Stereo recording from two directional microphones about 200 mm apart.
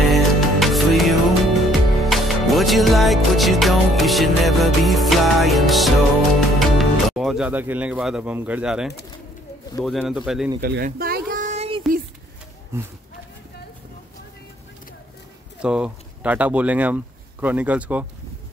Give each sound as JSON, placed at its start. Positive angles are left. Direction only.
{"t": 0.1, "sound": "music", "side_deg": 0}
{"t": 6.8, "sound": "speech", "side_deg": 0}
{"t": 10.6, "sound": "a sound", "side_deg": -50}
{"t": 12.7, "sound": "speech", "side_deg": -15}
{"t": 15.6, "sound": "speech", "side_deg": -5}